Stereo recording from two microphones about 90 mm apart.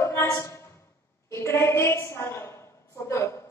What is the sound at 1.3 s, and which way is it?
A woman's voice, 30° left (ahead or behind).